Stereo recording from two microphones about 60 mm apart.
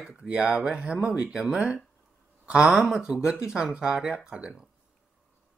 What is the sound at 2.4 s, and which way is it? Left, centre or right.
Speech, centre.